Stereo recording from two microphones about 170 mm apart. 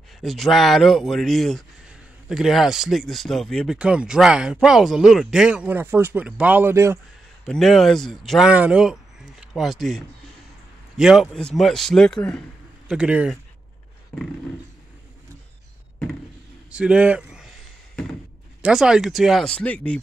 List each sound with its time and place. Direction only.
0.2 s speech: centre (ahead or behind); by 7.0 s 15° right (ahead or behind)
7.4 s a man's voice: centre (ahead or behind)
12.8 s speech: 5° right (ahead or behind)
16.7 s speech: 5° right (ahead or behind)
18.6 s speech: 5° right (ahead or behind)